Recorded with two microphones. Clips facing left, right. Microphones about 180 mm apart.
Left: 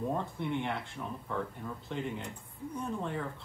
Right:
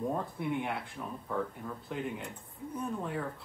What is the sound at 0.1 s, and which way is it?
Speech, 5° right (ahead or behind).